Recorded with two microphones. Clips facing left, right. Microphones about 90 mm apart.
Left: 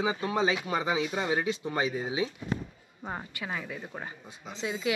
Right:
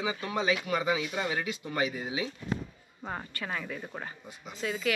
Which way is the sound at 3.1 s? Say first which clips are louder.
Even; 10° left (ahead or behind).